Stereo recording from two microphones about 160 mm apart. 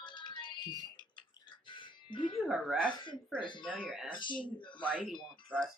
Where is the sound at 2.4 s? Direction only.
Centre (ahead or behind).